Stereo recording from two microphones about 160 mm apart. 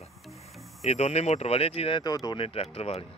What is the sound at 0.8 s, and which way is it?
Speech, 40° left (ahead or behind).